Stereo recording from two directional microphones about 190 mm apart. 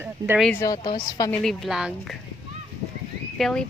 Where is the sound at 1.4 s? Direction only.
Centre (ahead or behind).